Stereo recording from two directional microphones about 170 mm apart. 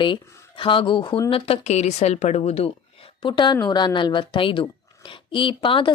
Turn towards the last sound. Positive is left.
turn(degrees=30)  # may be behind; listen again after turning